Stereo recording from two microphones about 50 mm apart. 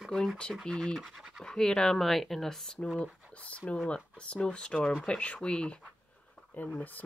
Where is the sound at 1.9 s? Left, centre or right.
Centre.